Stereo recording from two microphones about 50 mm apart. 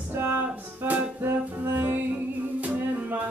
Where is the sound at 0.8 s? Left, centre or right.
Right.